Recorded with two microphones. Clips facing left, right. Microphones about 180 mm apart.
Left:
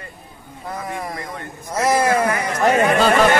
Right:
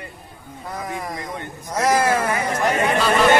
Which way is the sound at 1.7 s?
10° left (ahead or behind).